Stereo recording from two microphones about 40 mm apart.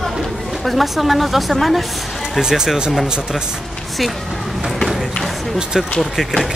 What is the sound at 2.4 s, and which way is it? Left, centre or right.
Speech, centre.